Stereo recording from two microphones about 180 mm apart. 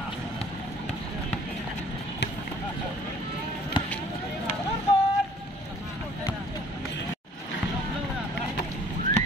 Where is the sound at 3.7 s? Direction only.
25° left (ahead or behind).